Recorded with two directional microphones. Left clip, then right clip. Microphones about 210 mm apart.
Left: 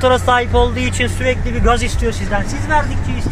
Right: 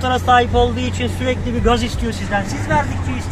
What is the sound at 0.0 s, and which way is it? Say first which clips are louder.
Speech: left 1 dB; 50° left (ahead or behind).